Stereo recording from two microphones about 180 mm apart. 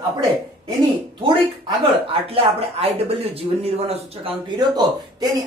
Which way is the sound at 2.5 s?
35° right (ahead or behind).